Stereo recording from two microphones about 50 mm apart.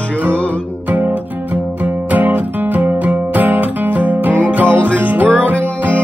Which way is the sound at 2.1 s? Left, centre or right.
Right.